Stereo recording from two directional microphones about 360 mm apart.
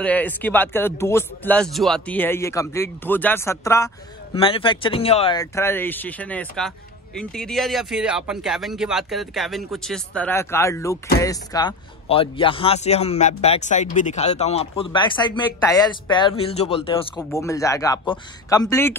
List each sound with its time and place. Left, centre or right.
0.0 s speech: centre